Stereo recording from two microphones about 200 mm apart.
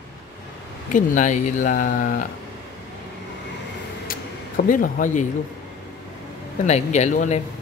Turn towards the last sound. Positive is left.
turn(degrees=35)  # may be behind; listen again after turning